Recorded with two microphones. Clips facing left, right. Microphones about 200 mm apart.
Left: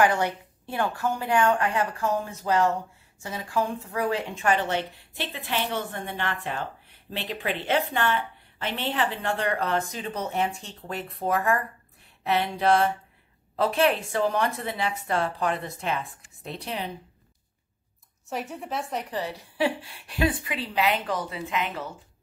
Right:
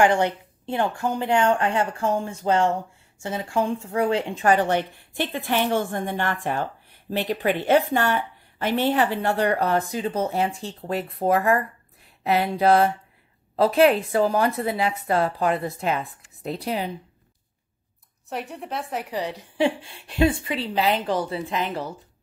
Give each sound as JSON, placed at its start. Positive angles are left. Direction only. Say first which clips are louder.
{"t": 0.0, "sound": "a woman's voice", "louder": "right 3 dB", "side_deg": -25}
{"t": 9.2, "sound": "a woman's voice", "louder": "right 5 dB", "side_deg": -35}
{"t": 18.3, "sound": "a woman's voice", "louder": "right 1 dB", "side_deg": 0}
{"t": 19.1, "sound": "speech", "louder": "right 5 dB", "side_deg": -20}